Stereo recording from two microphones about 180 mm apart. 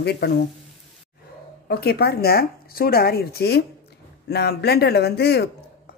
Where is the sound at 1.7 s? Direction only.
60° left (ahead or behind).